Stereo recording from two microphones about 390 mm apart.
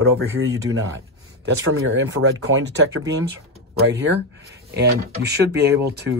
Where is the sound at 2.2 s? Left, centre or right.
Right.